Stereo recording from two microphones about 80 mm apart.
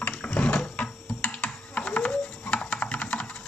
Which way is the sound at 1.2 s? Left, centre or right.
Centre.